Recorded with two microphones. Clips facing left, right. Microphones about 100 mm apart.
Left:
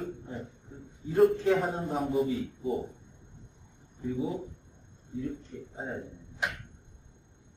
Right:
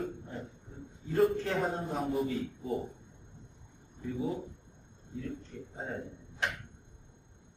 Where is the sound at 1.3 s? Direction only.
10° left (ahead or behind).